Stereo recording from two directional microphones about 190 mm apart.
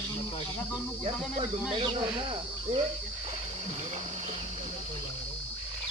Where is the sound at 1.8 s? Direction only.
25° right (ahead or behind).